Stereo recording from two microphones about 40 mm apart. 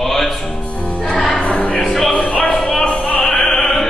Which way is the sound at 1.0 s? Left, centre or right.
Centre.